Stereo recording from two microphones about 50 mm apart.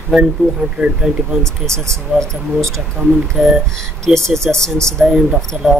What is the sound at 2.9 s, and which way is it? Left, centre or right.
Speech, centre.